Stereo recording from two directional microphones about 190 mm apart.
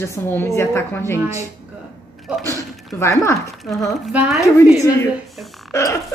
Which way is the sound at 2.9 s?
15° left (ahead or behind).